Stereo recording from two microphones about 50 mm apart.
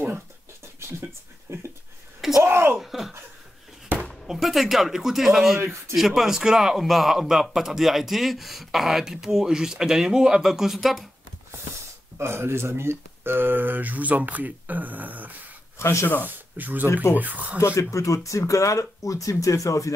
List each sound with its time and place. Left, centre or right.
1.5 s speech: right
2.4 s a sound: right
2.8 s speech: centre
3.9 s a sound: right
4.3 s speech: centre
5.6 s speech: right
5.9 s speech: centre
12.2 s speech: right
15.8 s speech: left
16.3 s speech: right
16.8 s speech: left
17.1 s speech: right
17.6 s speech: left
17.9 s speech: left